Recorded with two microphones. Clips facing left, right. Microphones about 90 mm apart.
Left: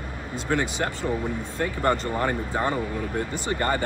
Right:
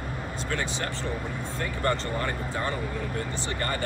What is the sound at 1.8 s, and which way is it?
Speech, 20° left (ahead or behind).